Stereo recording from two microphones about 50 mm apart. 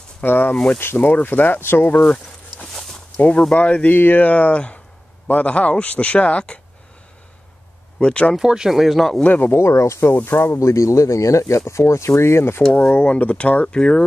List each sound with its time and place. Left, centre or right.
0.2 s speech: left
2.6 s a sound: centre
3.2 s speech: left
3.9 s speech: left
8.0 s speech: left
8.4 s speech: centre
9.2 s speech: left
9.6 s speech: left
10.2 s speech: left
10.6 s speech: left
13.0 s speech: left